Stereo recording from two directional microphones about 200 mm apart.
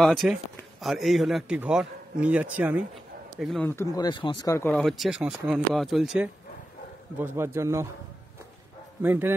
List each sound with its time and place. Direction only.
0.0 s a man's voice: centre (ahead or behind)
3.9 s speech: 20° left (ahead or behind)
4.7 s a man's voice: centre (ahead or behind)
9.0 s a man's voice: 10° right (ahead or behind)